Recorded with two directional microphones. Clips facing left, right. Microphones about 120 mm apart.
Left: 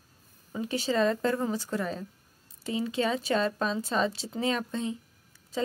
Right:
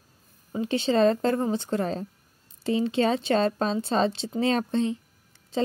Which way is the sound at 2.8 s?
30° right (ahead or behind).